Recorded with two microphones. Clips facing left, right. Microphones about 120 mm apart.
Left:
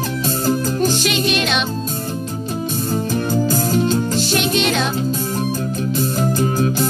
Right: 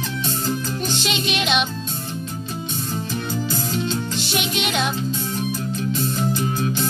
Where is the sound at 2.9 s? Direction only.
40° left (ahead or behind).